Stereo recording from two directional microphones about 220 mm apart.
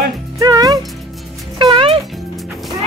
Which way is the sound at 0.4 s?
15° right (ahead or behind).